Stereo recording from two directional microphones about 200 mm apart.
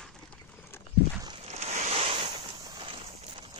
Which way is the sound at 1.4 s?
35° right (ahead or behind).